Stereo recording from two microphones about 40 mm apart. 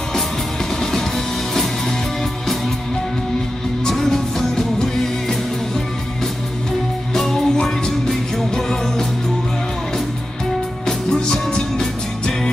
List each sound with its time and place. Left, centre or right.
0.7 s music: centre
3.8 s music: centre
7.2 s music: centre
10.9 s music: centre